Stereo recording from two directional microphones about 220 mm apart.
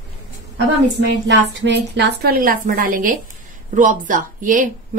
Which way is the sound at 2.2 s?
40° right (ahead or behind).